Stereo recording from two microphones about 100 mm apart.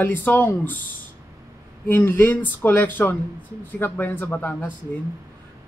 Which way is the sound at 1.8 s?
20° left (ahead or behind).